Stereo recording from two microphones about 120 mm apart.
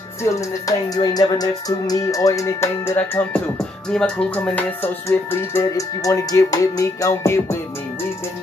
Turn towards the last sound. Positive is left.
turn(degrees=20)  # may be behind; listen again after turning